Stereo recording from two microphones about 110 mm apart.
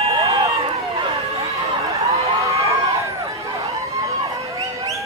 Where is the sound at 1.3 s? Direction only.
70° right (ahead or behind).